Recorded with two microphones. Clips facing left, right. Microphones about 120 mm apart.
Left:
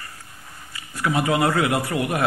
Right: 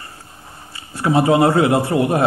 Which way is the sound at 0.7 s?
30° right (ahead or behind).